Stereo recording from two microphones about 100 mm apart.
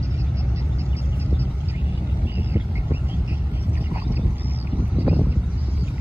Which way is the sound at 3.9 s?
20° right (ahead or behind).